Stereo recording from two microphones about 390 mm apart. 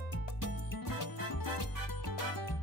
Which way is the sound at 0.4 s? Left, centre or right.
Left.